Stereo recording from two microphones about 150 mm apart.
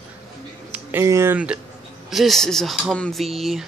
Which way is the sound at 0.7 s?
15° right (ahead or behind).